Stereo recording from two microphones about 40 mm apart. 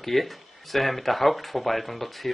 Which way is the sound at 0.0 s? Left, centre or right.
Centre.